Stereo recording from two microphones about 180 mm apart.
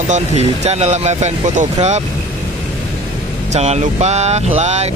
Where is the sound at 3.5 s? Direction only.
35° right (ahead or behind).